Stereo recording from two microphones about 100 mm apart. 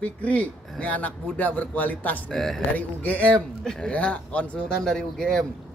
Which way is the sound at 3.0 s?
15° left (ahead or behind).